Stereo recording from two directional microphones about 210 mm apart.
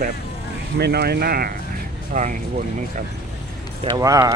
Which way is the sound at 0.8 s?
50° right (ahead or behind).